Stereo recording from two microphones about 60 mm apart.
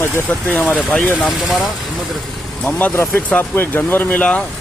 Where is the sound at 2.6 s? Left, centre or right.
Left.